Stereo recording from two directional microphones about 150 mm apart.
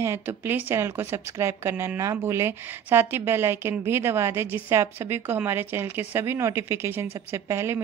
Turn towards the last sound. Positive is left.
turn(degrees=-15)  # may be behind; listen again after turning